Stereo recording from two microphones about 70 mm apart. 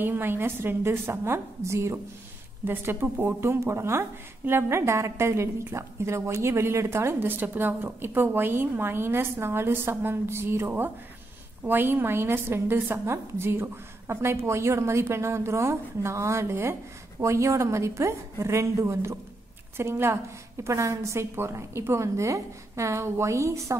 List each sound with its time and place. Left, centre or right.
0.0 s a woman's voice: right
2.6 s a woman's voice: right
20.6 s a woman's voice: right